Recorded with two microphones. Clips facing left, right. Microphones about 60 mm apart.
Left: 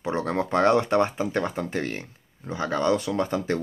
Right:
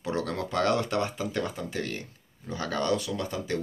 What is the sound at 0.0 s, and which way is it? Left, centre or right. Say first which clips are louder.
Speech: left 4 dB; left.